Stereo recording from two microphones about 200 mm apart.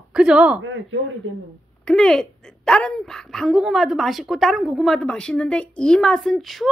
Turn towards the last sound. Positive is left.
turn(degrees=0)  # may be behind; listen again after turning